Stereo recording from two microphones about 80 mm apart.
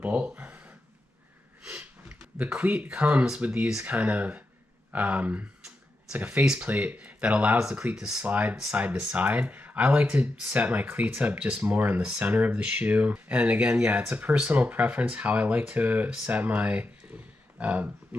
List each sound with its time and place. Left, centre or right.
0.0 s speech: centre
1.6 s a sound: centre
3.3 s speech: centre